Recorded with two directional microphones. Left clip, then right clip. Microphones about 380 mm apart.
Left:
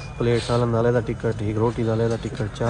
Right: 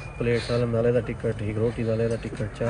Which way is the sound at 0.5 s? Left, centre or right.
Centre.